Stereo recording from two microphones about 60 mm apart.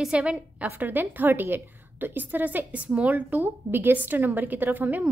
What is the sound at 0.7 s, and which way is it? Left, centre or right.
A woman's voice, right.